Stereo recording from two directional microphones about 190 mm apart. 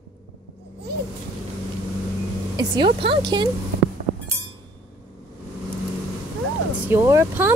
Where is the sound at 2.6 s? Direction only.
25° right (ahead or behind).